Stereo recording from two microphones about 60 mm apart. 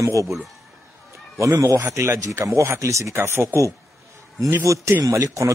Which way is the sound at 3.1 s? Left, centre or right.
Right.